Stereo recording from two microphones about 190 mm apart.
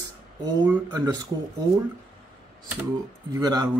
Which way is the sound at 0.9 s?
20° right (ahead or behind).